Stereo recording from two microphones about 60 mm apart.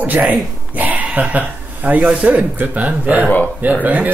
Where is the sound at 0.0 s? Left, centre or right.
Right.